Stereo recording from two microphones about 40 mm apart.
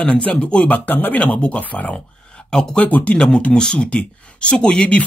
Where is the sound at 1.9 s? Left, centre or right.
Left.